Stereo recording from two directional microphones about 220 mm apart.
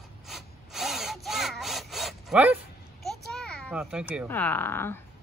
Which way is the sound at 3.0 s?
Centre (ahead or behind).